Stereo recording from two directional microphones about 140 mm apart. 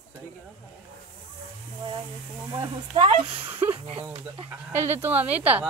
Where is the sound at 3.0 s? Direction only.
40° right (ahead or behind).